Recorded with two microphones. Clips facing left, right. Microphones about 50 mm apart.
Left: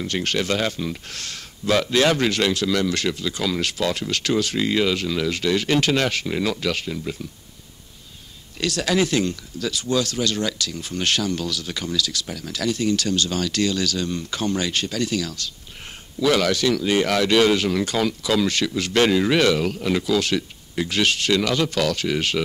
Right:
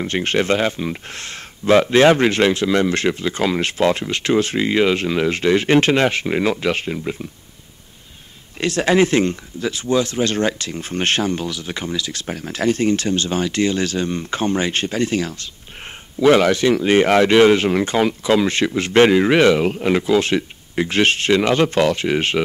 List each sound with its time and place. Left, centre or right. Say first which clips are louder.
0.0 s speech: right 5 dB; right
8.5 s speech: right 5 dB; right